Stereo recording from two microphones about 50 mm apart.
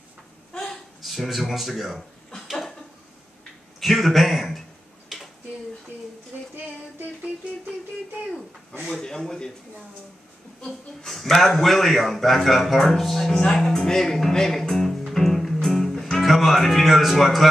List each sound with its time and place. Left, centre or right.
1.0 s a man's voice: centre
3.8 s a man's voice: centre
5.1 s a sound: centre
6.5 s female singing: right
8.8 s speech: centre
11.1 s a man's voice: centre